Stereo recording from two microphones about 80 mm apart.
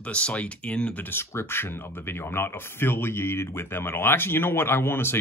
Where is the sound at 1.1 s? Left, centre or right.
Left.